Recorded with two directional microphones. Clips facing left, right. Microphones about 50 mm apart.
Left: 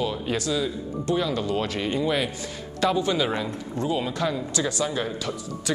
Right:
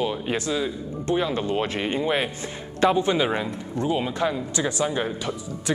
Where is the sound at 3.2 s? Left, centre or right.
Centre.